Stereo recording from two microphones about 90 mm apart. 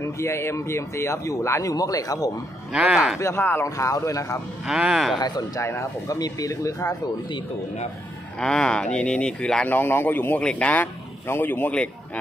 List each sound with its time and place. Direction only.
0.0 s speech: 30° left (ahead or behind)
2.7 s a man's voice: 10° right (ahead or behind)
3.2 s speech: 30° left (ahead or behind)
3.6 s speech: 40° left (ahead or behind)
4.6 s speech: 5° right (ahead or behind)
5.1 s speech: 50° left (ahead or behind)
5.6 s speech: 30° left (ahead or behind)
6.1 s speech: 45° left (ahead or behind)
8.4 s speech: 10° left (ahead or behind)
9.7 s speech: 20° left (ahead or behind)